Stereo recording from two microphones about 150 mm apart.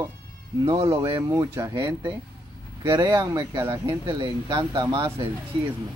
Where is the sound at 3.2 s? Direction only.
20° right (ahead or behind).